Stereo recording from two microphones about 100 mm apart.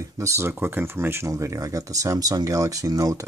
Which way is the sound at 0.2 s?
30° right (ahead or behind).